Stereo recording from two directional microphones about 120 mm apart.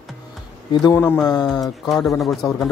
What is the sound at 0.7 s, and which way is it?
Speech, 35° left (ahead or behind).